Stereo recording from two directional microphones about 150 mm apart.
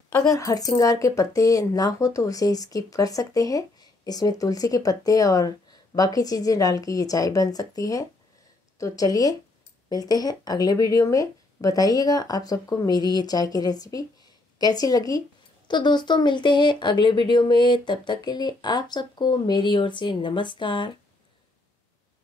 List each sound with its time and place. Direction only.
0.3 s speech: 25° left (ahead or behind)